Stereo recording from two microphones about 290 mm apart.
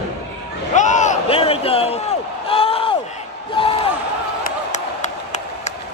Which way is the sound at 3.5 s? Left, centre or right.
Centre.